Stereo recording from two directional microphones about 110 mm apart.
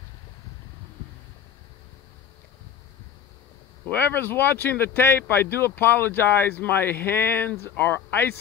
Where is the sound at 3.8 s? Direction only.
15° left (ahead or behind).